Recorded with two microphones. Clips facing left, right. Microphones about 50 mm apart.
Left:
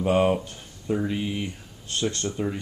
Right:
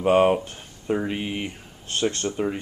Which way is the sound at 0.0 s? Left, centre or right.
Right.